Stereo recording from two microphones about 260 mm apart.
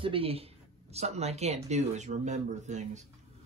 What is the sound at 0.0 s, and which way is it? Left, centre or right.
Speech, right.